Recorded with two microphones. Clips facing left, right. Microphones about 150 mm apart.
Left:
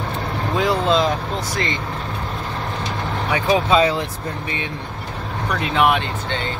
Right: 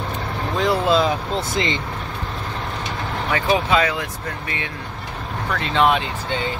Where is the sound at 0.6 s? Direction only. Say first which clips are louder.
Even; centre (ahead or behind).